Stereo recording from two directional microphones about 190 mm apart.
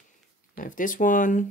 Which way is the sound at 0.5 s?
45° left (ahead or behind).